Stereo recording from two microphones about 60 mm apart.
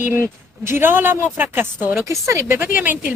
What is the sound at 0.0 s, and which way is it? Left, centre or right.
A woman's voice, right.